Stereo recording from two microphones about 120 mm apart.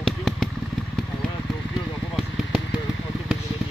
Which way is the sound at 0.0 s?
Centre (ahead or behind).